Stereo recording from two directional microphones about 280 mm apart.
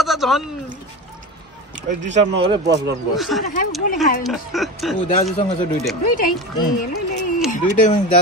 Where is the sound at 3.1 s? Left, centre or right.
Centre.